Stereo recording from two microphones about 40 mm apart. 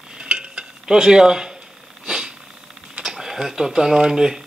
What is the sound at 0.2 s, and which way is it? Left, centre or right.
Dishes, right.